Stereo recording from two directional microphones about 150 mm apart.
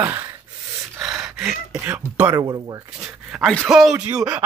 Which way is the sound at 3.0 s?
5° right (ahead or behind).